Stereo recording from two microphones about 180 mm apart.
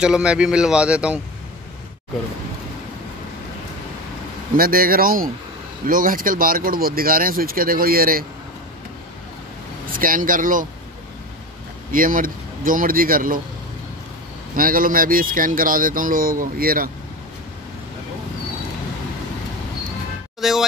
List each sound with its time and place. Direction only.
0.0 s a man's voice: 5° right (ahead or behind)
4.6 s speech: 55° right (ahead or behind)
9.9 s speech: 50° right (ahead or behind)
11.9 s speech: 50° right (ahead or behind)
14.5 s speech: 50° right (ahead or behind)
20.3 s music: centre (ahead or behind)